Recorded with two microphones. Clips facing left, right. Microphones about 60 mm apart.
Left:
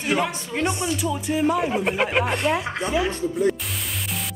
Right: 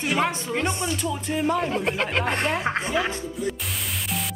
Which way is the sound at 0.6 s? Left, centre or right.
Centre.